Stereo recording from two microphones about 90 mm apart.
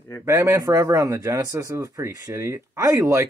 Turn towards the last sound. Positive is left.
turn(degrees=-35)  # may be behind; listen again after turning